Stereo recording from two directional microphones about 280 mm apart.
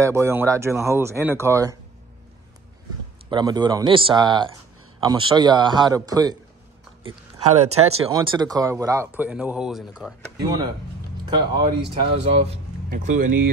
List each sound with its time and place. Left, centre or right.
0.0 s speech: centre
3.3 s speech: centre
7.0 s biting: right
7.5 s speech: right; by 10.1 s centre
11.2 s speech: centre